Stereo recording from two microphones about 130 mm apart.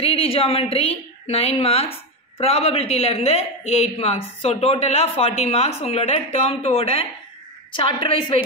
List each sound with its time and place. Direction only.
0.0 s a woman's voice: 50° left (ahead or behind)